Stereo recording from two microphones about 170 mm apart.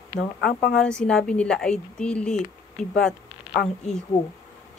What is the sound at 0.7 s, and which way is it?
Speech, 5° left (ahead or behind).